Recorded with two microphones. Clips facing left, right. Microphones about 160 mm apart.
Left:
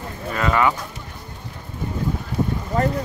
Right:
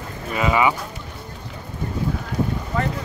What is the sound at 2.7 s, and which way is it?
Speech, 40° left (ahead or behind).